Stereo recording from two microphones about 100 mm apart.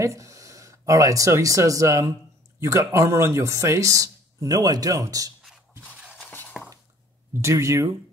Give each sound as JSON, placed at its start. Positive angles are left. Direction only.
{"t": 0.0, "sound": "speech", "side_deg": -30}
{"t": 6.1, "sound": "a sound", "side_deg": 20}
{"t": 7.4, "sound": "speech", "side_deg": -30}